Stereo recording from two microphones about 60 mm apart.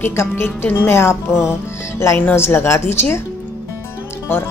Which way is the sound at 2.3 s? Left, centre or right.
Left.